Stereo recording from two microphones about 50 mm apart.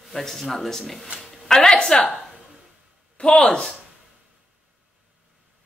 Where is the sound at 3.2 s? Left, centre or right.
Centre.